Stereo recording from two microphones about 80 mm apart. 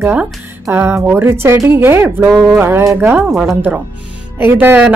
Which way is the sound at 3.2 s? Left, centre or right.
Centre.